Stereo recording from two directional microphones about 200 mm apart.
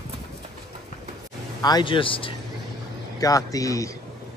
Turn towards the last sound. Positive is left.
turn(degrees=15)  # may be behind; listen again after turning